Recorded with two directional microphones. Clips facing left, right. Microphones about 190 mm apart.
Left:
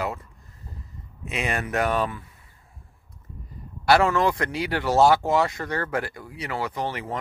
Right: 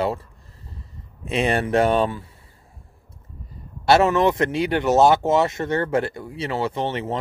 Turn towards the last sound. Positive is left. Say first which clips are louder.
# right 5 dB
turn(degrees=-25)  # may be behind; listen again after turning